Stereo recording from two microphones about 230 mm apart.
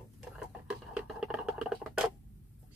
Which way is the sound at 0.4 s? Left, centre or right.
Centre.